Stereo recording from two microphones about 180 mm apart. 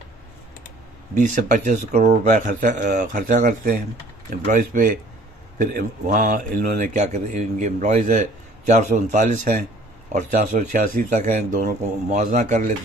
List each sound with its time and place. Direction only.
1.1 s speech: 45° right (ahead or behind)